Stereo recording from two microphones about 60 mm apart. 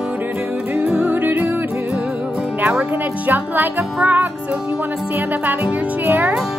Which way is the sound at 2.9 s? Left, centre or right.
Right.